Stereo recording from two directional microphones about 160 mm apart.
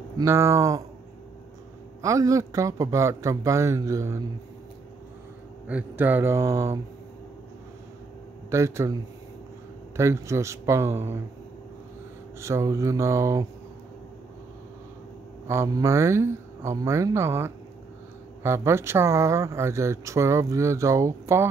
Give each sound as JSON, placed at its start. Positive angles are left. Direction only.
{"t": 0.2, "sound": "speech", "side_deg": -15}
{"t": 2.0, "sound": "speech", "side_deg": -20}
{"t": 5.7, "sound": "speech", "side_deg": -10}
{"t": 8.5, "sound": "speech", "side_deg": -20}
{"t": 9.9, "sound": "speech", "side_deg": -15}
{"t": 12.4, "sound": "speech", "side_deg": -20}
{"t": 15.4, "sound": "speech", "side_deg": -15}